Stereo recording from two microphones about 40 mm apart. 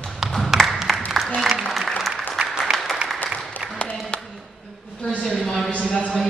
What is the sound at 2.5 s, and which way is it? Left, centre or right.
Applause, centre.